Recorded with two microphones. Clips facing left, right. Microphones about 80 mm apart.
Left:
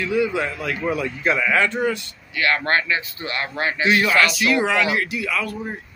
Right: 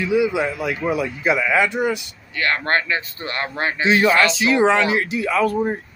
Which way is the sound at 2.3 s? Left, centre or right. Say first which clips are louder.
Even; right.